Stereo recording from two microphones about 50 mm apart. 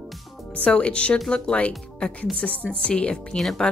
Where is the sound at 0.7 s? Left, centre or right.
Left.